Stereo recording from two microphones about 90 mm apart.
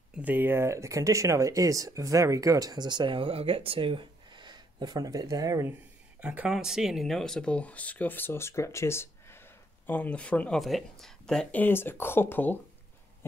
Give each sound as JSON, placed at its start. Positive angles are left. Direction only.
{"t": 0.1, "sound": "speech", "side_deg": -20}
{"t": 6.2, "sound": "speech", "side_deg": -15}
{"t": 9.8, "sound": "speech", "side_deg": 15}
{"t": 10.6, "sound": "speech", "side_deg": 0}
{"t": 11.5, "sound": "speech", "side_deg": 20}